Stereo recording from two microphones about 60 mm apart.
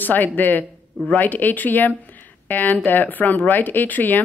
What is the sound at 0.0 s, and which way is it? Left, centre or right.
Speech, left.